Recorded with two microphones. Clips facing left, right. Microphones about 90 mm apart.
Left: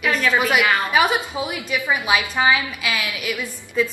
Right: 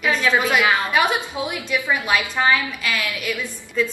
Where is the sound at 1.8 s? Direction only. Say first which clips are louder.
Left 2 dB; 10° left (ahead or behind).